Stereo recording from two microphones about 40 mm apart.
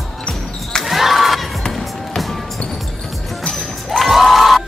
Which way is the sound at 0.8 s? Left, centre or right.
Centre.